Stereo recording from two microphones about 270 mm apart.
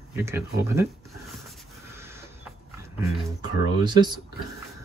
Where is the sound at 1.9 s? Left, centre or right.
Centre.